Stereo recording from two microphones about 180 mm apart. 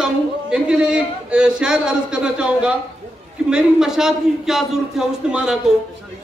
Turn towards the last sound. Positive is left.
turn(degrees=-5)  # may be behind; listen again after turning